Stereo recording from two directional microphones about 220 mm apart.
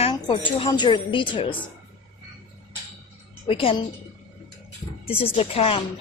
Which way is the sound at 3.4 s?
25° left (ahead or behind).